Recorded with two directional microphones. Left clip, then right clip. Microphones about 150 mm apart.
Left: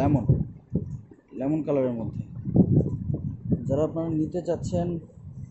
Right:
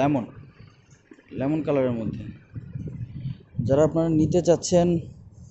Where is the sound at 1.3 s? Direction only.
Centre (ahead or behind).